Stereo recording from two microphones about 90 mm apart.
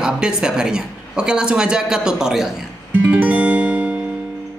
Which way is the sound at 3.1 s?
15° right (ahead or behind).